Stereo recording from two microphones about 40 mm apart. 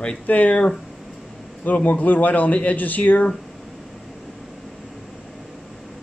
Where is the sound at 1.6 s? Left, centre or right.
Left.